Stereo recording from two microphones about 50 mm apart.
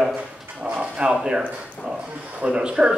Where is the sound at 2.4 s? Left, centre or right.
Centre.